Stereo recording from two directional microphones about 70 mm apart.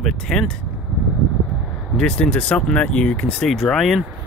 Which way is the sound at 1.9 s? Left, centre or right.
Centre.